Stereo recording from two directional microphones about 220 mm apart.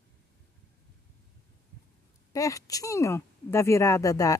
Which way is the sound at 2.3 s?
15° left (ahead or behind).